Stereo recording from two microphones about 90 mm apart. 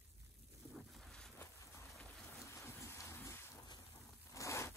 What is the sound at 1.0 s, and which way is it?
Boat, 5° left (ahead or behind).